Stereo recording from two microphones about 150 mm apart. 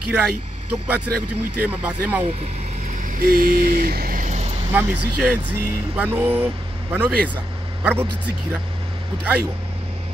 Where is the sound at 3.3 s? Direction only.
70° right (ahead or behind).